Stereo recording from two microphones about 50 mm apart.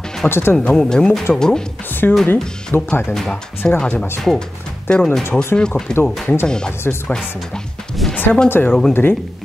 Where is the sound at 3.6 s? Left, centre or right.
Left.